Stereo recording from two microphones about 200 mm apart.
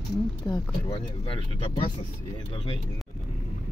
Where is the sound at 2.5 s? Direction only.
25° left (ahead or behind).